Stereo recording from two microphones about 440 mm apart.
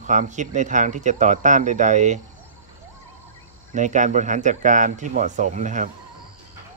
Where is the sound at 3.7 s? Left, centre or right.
Centre.